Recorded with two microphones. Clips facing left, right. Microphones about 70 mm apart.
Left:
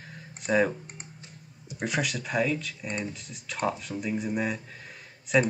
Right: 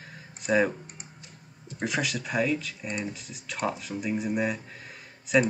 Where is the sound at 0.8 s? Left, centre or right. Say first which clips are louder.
Left 1 dB; left.